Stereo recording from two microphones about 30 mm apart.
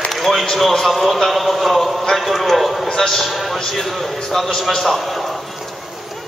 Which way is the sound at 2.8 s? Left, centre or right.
Centre.